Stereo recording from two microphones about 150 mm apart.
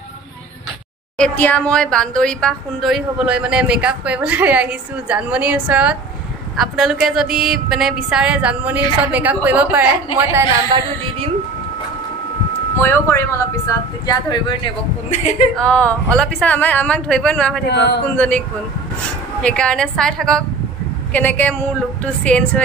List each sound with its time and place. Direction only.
1.1 s a woman's voice: 5° left (ahead or behind); by 10.4 s 10° right (ahead or behind)
10.7 s a woman's voice: 40° right (ahead or behind)
12.7 s speech: 15° left (ahead or behind)
15.0 s a woman's voice: 50° left (ahead or behind)
15.5 s speech: 5° left (ahead or behind)
19.4 s a woman's voice: 5° left (ahead or behind)